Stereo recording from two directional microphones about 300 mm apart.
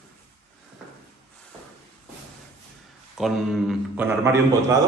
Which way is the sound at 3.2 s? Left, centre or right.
Centre.